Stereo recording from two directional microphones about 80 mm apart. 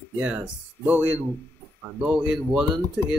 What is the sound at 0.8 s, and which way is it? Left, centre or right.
Speech, right.